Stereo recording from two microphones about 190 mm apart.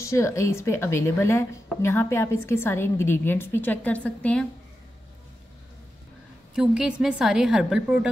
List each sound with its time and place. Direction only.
0.0 s a woman's voice: 15° left (ahead or behind)
6.5 s a woman's voice: 5° right (ahead or behind)